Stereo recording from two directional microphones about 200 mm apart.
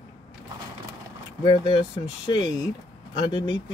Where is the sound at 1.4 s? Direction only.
25° left (ahead or behind).